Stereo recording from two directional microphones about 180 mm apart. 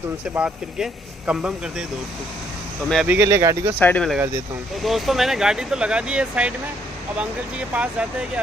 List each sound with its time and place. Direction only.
0.3 s speech: 10° right (ahead or behind)
2.9 s speech: centre (ahead or behind)
3.2 s speech: 15° right (ahead or behind)
3.8 s speech: 5° left (ahead or behind)
7.7 s speech: 5° right (ahead or behind)